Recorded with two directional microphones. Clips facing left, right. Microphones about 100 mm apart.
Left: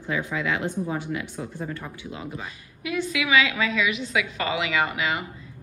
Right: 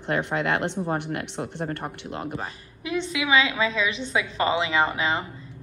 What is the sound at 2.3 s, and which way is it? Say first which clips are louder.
A woman's voice: right 3 dB; 30° right (ahead or behind).